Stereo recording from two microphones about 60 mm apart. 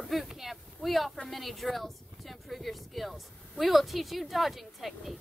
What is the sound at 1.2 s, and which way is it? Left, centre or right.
Speech, centre.